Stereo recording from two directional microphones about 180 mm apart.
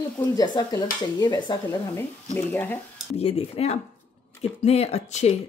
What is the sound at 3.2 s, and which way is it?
Speech, 35° left (ahead or behind).